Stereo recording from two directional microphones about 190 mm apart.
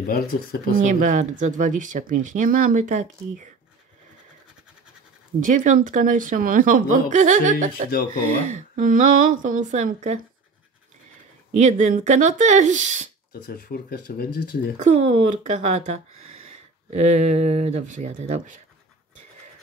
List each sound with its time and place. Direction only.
0.0 s speech: 50° left (ahead or behind)
0.7 s speech: 40° right (ahead or behind)
5.4 s speech: 40° right (ahead or behind)
11.5 s speech: 40° right (ahead or behind)
13.3 s speech: 55° left (ahead or behind)
14.8 s speech: 35° right (ahead or behind)